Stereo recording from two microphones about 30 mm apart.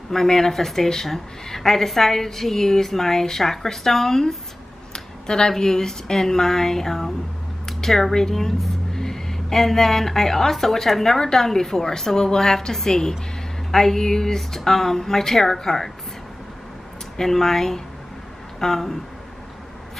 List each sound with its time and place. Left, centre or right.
0.1 s speech: centre
7.6 s a sound: centre
8.1 s a woman's voice: centre
17.2 s speech: centre